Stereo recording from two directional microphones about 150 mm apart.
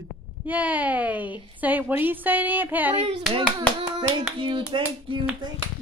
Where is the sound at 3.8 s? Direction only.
35° right (ahead or behind).